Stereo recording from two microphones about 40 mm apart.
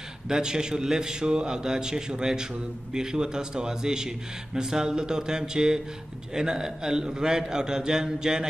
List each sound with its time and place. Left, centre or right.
0.3 s a man's voice: centre